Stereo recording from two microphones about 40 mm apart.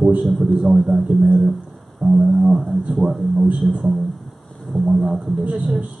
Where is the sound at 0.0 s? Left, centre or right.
Right.